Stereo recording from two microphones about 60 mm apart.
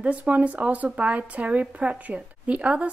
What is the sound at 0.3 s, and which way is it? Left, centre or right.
Speech, right.